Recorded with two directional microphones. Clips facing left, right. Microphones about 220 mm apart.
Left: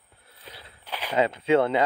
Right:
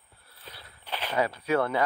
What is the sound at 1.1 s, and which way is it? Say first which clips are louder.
Speech: left 5 dB; 25° left (ahead or behind).